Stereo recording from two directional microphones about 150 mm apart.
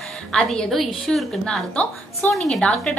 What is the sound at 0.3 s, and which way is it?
A woman's voice, 5° left (ahead or behind).